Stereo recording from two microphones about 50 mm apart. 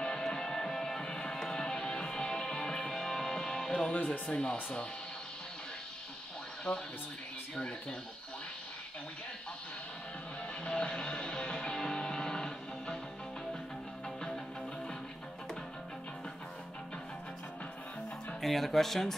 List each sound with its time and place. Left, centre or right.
0.0 s music: centre
3.9 s speech: left
6.7 s speech: centre
10.6 s music: centre
14.0 s music: centre
18.4 s speech: centre